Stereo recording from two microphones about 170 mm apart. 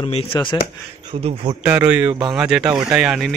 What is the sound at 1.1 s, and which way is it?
Speech, 35° right (ahead or behind).